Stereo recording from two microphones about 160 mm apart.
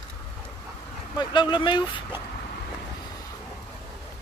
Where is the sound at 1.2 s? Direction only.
30° left (ahead or behind).